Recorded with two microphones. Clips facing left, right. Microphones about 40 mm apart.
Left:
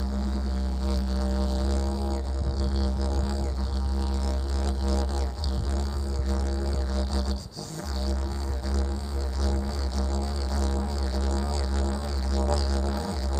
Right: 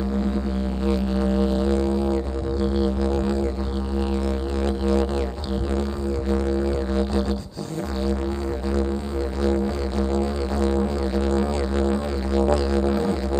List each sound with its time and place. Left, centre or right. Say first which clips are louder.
0.8 s music: right 10 dB; right
4.6 s music: right 10 dB; right
6.3 s music: right 10 dB; right
9.4 s music: right 10 dB; right